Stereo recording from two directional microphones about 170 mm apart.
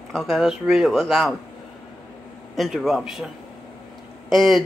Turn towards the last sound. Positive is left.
turn(degrees=0)  # may be behind; listen again after turning